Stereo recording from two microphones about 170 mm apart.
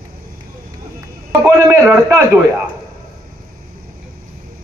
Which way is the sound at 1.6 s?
10° right (ahead or behind).